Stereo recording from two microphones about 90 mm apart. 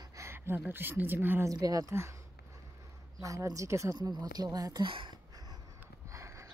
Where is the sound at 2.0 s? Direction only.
35° right (ahead or behind).